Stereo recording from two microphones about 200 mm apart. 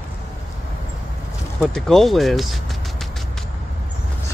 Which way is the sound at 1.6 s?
Centre (ahead or behind).